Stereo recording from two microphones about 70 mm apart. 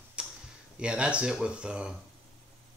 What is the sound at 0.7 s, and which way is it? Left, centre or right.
Speech, centre.